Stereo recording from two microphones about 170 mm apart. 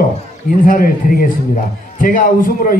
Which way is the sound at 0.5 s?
55° left (ahead or behind).